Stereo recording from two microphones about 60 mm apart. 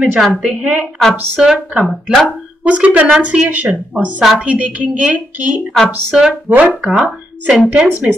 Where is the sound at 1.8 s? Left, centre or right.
Centre.